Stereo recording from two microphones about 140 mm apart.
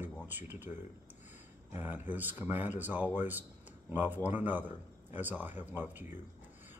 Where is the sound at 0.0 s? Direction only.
15° right (ahead or behind).